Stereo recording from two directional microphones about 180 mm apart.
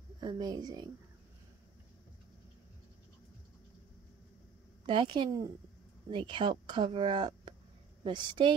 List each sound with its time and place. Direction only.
0.2 s speech: 20° right (ahead or behind)
4.8 s speech: 25° right (ahead or behind)